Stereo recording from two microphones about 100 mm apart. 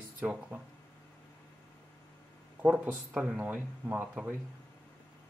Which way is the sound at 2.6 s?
15° right (ahead or behind).